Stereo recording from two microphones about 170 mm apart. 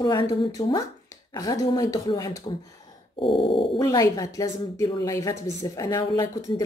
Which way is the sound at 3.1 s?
30° left (ahead or behind).